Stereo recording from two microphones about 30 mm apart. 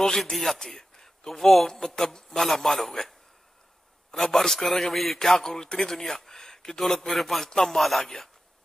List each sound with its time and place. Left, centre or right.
0.0 s speech: centre
0.7 s speech: centre
2.4 s a man's voice: centre
5.4 s speech: centre
5.9 s a sound: centre
7.1 s a man's voice: centre
8.0 s speech: centre